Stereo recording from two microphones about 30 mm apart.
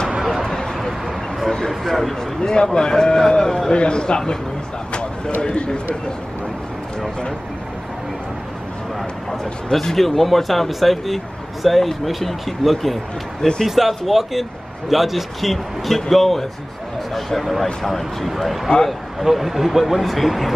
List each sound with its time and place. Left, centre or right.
0.3 s a sound: centre
1.9 s speech: centre
2.4 s a man's voice: left
3.7 s a man's voice: left
9.3 s speech: centre
15.5 s speech: centre
19.2 s speech: centre